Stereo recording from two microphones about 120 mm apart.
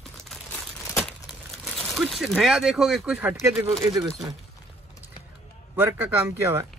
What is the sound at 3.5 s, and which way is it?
Speech, 25° right (ahead or behind).